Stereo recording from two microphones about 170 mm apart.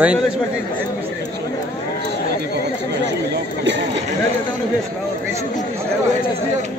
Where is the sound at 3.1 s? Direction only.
85° right.